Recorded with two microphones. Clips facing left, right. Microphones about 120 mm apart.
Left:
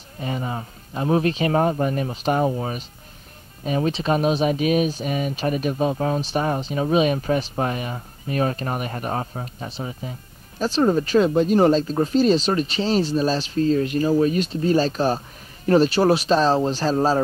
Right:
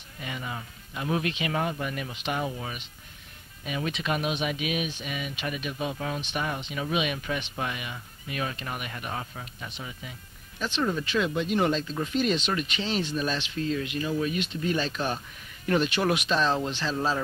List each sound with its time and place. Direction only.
0.2 s speech: 35° left (ahead or behind)